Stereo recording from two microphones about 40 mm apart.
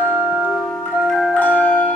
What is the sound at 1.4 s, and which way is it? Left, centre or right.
Music, left.